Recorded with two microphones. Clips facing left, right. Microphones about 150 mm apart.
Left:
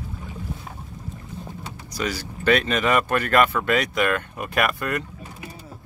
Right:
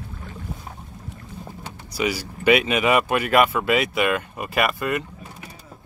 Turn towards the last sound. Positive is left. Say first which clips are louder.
# right 1 dB
turn(degrees=-5)  # may be behind; listen again after turning